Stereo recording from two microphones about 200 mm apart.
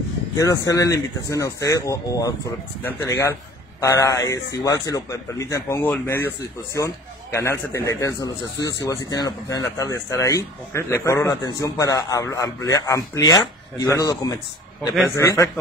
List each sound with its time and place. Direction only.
0.4 s a man's voice: 15° left (ahead or behind)